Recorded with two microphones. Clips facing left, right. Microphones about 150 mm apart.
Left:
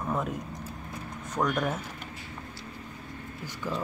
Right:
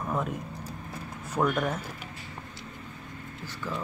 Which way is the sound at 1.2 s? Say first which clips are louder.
Right 1 dB; 10° right (ahead or behind).